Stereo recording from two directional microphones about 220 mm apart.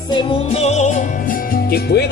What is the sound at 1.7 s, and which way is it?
Speech, 50° left (ahead or behind).